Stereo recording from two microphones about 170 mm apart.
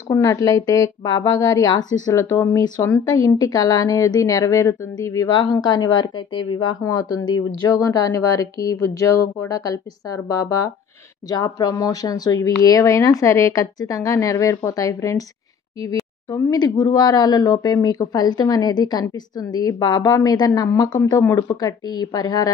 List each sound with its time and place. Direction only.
0.1 s a woman's voice: 20° left (ahead or behind)